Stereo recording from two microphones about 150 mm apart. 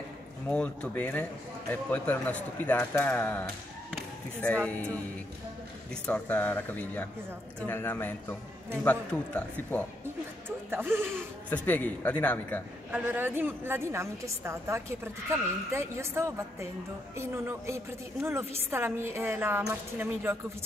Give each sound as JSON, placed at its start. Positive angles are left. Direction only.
{"t": 0.5, "sound": "a man's voice", "side_deg": 10}
{"t": 3.9, "sound": "basketball bounce", "side_deg": 5}
{"t": 4.6, "sound": "a man's voice", "side_deg": 10}
{"t": 6.0, "sound": "a man's voice", "side_deg": 10}
{"t": 10.7, "sound": "a woman's voice", "side_deg": -15}
{"t": 11.5, "sound": "a man's voice", "side_deg": 10}
{"t": 12.9, "sound": "a woman's voice", "side_deg": -15}